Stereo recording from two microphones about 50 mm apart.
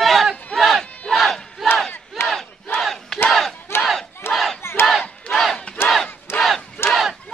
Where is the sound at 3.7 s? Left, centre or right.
Left.